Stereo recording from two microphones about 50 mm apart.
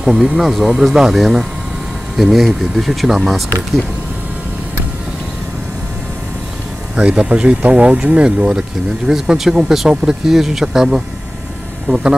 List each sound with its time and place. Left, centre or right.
0.0 s speech: centre
7.0 s speech: right